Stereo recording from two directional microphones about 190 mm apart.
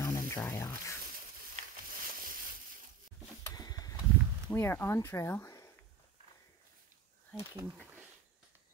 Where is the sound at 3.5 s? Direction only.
20° left (ahead or behind).